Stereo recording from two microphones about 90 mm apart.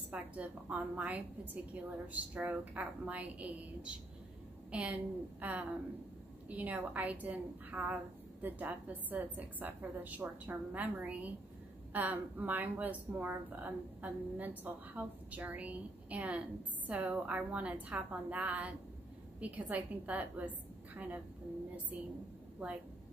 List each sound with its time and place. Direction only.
0.1 s a woman's voice: 15° right (ahead or behind)